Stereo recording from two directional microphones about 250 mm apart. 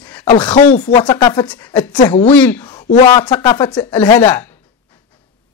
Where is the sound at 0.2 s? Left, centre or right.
Centre.